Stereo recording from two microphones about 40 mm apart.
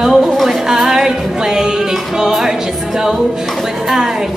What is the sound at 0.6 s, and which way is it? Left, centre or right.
Music, centre.